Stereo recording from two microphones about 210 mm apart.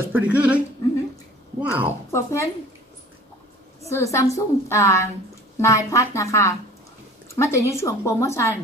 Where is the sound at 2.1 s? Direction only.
15° left (ahead or behind).